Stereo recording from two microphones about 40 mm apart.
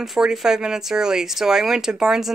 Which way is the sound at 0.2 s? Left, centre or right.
Centre.